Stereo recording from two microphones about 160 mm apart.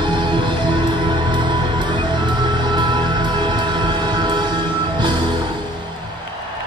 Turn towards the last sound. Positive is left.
turn(degrees=-30)  # may be behind; listen again after turning